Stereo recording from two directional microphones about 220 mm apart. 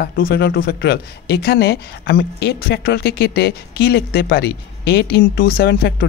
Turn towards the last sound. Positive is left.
turn(degrees=45)  # may be behind; listen again after turning